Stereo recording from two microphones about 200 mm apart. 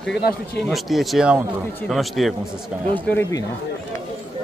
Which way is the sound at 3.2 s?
15° left (ahead or behind).